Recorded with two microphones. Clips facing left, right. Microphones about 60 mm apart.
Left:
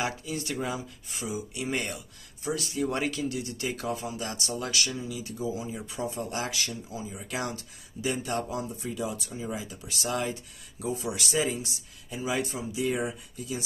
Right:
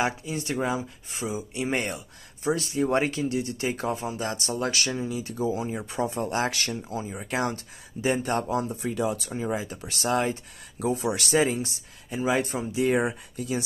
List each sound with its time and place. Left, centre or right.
0.0 s speech: right
10.8 s speech: right